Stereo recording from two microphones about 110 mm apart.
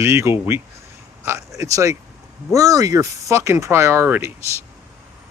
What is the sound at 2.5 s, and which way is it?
Speech, 30° right (ahead or behind).